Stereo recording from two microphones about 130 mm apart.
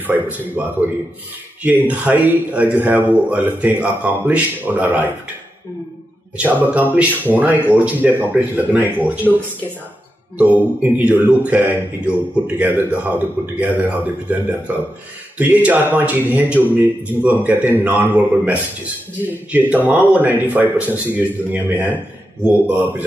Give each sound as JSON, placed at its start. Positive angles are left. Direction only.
{"t": 0.0, "sound": "a man's voice", "side_deg": -15}
{"t": 6.3, "sound": "a man's voice", "side_deg": -10}
{"t": 10.8, "sound": "a man's voice", "side_deg": -15}